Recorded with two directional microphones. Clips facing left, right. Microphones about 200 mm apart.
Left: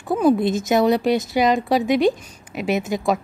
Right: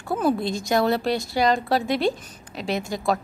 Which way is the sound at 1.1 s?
20° left (ahead or behind).